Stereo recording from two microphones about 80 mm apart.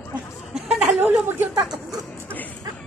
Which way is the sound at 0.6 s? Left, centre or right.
Centre.